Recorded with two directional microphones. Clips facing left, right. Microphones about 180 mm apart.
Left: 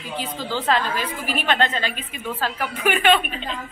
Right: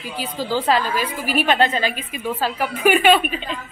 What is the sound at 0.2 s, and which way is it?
A woman's voice, 10° right (ahead or behind).